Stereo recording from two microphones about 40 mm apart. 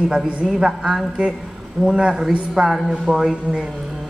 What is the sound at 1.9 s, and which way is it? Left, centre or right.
Speech, right.